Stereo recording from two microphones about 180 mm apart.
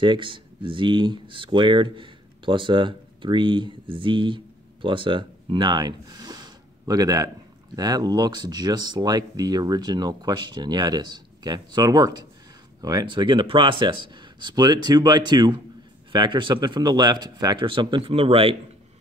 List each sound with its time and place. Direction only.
0.0 s speech: 25° right (ahead or behind)